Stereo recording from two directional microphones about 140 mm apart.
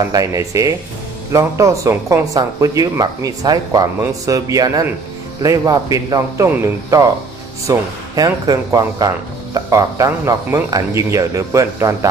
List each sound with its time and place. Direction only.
0.1 s speech: 25° right (ahead or behind)